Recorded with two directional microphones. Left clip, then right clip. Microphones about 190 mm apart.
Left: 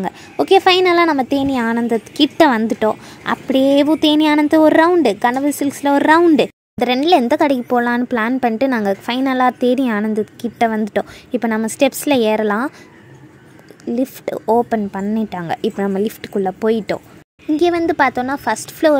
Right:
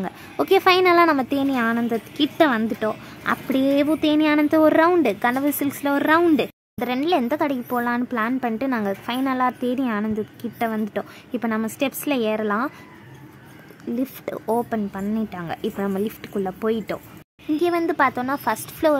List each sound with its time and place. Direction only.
0.0 s speech: 10° left (ahead or behind)
13.9 s speech: 15° left (ahead or behind)